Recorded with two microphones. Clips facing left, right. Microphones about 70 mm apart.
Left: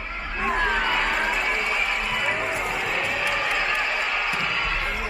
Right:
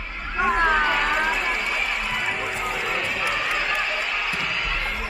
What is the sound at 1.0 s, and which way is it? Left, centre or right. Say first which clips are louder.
Run: right 1 dB; centre.